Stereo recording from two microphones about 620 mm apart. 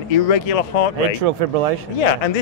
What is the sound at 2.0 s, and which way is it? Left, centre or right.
Speech, left.